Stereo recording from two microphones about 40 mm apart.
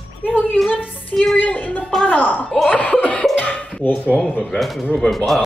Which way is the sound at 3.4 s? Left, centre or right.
Left.